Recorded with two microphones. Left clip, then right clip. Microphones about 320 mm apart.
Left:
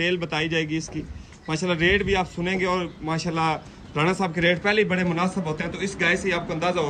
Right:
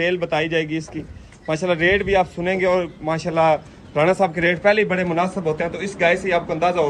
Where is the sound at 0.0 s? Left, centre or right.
Centre.